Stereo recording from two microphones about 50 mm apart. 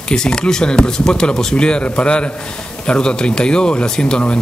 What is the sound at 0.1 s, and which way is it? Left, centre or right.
Speech, centre.